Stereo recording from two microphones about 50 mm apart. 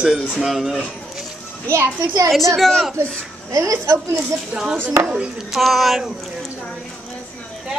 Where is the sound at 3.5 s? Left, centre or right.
Right.